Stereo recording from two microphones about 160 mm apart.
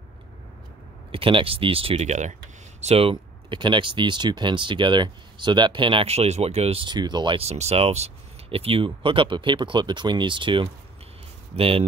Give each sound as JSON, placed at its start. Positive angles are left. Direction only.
{"t": 1.1, "sound": "speech", "side_deg": -35}